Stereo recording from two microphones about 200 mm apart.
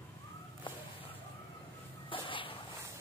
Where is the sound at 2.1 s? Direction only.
25° left (ahead or behind).